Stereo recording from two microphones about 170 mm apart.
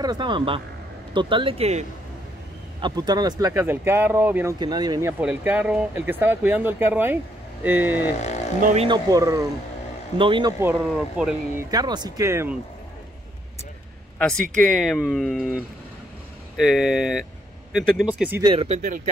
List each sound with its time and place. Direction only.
0.0 s speech: 25° right (ahead or behind)
2.8 s speech: 25° right (ahead or behind)
4.6 s speech: 25° right (ahead or behind)
5.2 s speech: 10° right (ahead or behind)
8.5 s speech: 50° right (ahead or behind)
8.8 s speech: 25° right (ahead or behind)
10.1 s speech: 30° right (ahead or behind)
10.6 s speech: 5° right (ahead or behind)
11.7 s speech: 25° right (ahead or behind)
14.1 s speech: 5° left (ahead or behind)
18.4 s speech: 30° right (ahead or behind)